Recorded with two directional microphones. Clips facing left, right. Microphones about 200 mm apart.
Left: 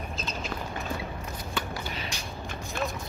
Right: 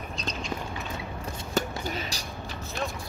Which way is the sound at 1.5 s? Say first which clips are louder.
Right 6 dB; 40° right (ahead or behind).